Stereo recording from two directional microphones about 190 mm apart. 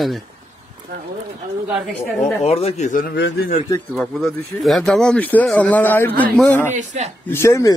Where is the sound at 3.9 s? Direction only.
Centre (ahead or behind).